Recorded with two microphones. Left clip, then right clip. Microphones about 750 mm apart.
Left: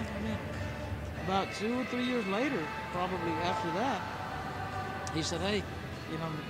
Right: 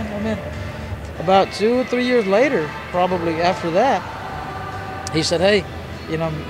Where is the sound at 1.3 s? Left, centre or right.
Right.